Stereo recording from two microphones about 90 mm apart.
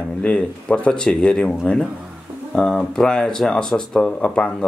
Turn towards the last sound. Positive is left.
turn(degrees=10)  # may be behind; listen again after turning